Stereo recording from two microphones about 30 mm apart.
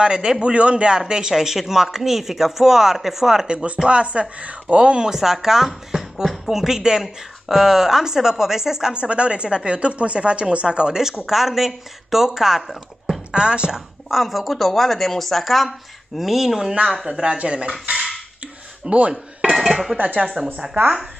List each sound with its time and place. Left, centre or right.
0.0 s a man's voice: right
0.4 s a man's voice: right; by 3.4 s centre
3.4 s speech: right
4.7 s speech: right
5.1 s a man's voice: centre
8.9 s speech: right
11.0 s a man's voice: centre
13.3 s speech: right
14.1 s speech: centre
16.2 s a man's voice: centre
17.2 s speech: right
18.9 s speech: right
19.6 s dishes: centre
20.2 s speech: right